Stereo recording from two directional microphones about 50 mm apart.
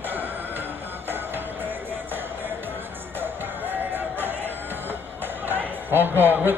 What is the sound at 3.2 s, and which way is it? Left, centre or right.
Music, right.